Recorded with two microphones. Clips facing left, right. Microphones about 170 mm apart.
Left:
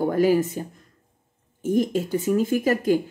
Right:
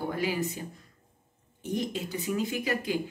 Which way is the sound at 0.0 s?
45° left (ahead or behind).